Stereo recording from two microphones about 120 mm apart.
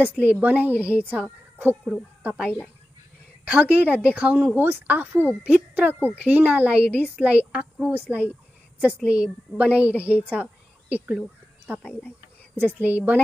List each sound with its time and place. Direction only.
0.0 s a woman's voice: 10° right (ahead or behind)
3.4 s a woman's voice: 10° right (ahead or behind)
10.3 s a sound: 15° right (ahead or behind)
11.8 s speech: 15° left (ahead or behind)
12.5 s a woman's voice: 15° right (ahead or behind)